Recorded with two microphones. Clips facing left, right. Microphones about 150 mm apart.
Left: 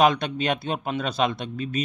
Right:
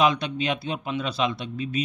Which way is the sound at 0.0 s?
50° left (ahead or behind).